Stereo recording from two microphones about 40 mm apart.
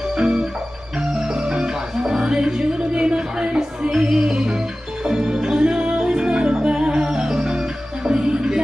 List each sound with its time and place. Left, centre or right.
0.1 s music: centre
2.0 s speech: centre
3.9 s music: centre